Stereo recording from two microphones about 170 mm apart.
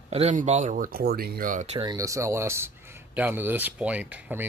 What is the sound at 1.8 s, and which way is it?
Speech, 20° right (ahead or behind).